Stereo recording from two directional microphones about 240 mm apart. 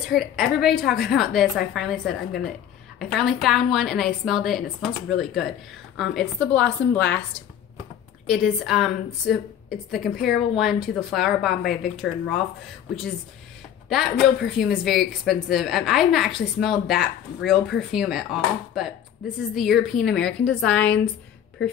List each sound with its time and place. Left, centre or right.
0.1 s speech: centre
8.3 s speech: centre
13.8 s speech: centre